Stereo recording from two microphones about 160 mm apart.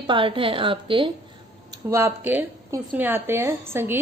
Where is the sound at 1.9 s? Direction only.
15° right (ahead or behind).